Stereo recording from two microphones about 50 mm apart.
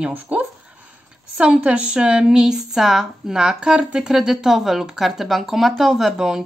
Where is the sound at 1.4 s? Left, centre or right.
Right.